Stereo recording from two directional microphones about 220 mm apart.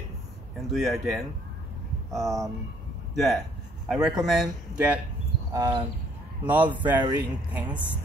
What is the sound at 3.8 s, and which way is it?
Speech, centre (ahead or behind).